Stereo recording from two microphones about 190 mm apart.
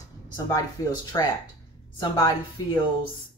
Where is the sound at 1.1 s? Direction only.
20° left (ahead or behind).